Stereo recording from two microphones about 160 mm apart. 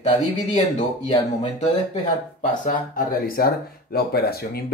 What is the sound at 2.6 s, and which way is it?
Speech, 60° left (ahead or behind).